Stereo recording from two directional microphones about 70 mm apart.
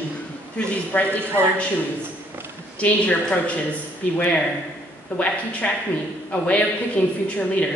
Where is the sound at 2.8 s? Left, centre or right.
Centre.